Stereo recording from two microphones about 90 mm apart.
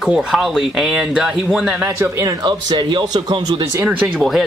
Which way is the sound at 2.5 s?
55° right (ahead or behind).